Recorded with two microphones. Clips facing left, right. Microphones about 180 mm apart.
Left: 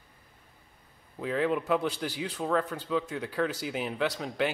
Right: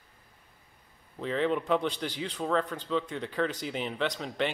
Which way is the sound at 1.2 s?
5° left (ahead or behind).